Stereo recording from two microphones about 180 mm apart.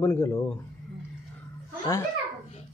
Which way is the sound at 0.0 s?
15° left (ahead or behind).